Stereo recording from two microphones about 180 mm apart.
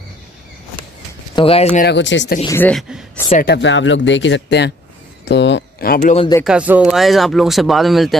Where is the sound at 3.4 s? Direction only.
70° left (ahead or behind); by 6.3 s 40° left (ahead or behind).